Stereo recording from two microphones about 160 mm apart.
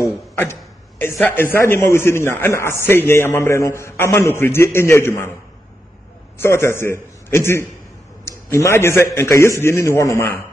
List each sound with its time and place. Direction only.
0.4 s a man's voice: 15° left (ahead or behind)
6.3 s a man's voice: 15° left (ahead or behind)